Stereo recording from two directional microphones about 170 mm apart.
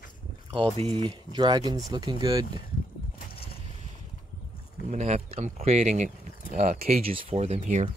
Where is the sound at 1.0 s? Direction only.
25° right (ahead or behind).